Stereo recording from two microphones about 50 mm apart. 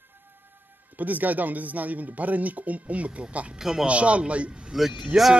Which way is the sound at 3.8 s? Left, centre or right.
Right.